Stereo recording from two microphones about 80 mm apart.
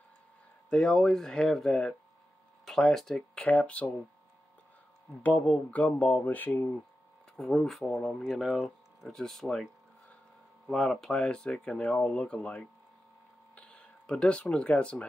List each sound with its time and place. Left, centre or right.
0.7 s speech: centre
3.3 s speech: centre
5.4 s speech: centre
7.3 s speech: centre
10.7 s speech: centre